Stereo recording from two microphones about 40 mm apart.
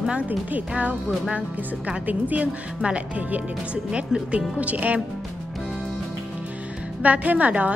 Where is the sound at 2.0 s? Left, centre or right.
Right.